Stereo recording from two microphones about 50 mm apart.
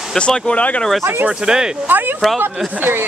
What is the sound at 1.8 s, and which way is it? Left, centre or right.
Speech, right.